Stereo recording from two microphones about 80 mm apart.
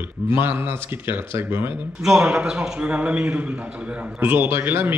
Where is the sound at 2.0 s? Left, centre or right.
Centre; by 5.0 s right.